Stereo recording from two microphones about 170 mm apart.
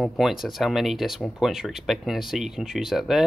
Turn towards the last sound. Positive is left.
turn(degrees=0)  # may be behind; listen again after turning